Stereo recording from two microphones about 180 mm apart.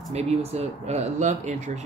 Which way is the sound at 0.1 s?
35° right (ahead or behind).